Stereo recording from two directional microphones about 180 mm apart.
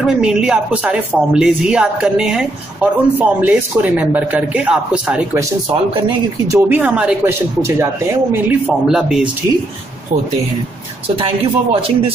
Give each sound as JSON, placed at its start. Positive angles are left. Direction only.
{"t": 0.0, "sound": "a woman's voice", "side_deg": -5}
{"t": 6.4, "sound": "a woman's voice", "side_deg": -15}
{"t": 11.1, "sound": "speech", "side_deg": -30}